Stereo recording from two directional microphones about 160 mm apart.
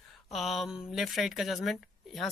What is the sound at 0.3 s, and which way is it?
Speech, centre (ahead or behind).